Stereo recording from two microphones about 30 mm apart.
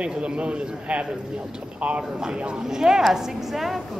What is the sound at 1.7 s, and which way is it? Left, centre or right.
Speech, right.